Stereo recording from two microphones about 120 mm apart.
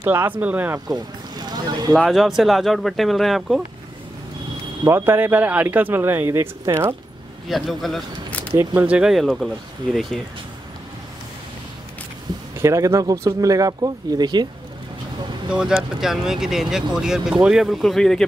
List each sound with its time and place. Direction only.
0.0 s speech: 20° right (ahead or behind)
0.7 s speech: 35° right (ahead or behind)
2.0 s speech: centre (ahead or behind)
4.8 s speech: 20° right (ahead or behind)
7.4 s speech: centre (ahead or behind)
8.3 s keys jangling: 10° left (ahead or behind)
8.5 s speech: 15° right (ahead or behind)
12.5 s speech: 25° right (ahead or behind)
15.5 s speech: 5° right (ahead or behind)